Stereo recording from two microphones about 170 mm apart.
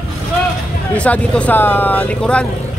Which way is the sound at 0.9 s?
5° left (ahead or behind).